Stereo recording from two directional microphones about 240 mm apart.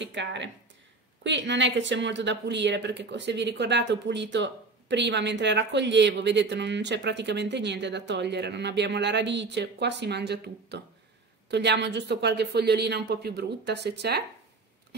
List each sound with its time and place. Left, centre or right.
0.0 s speech: right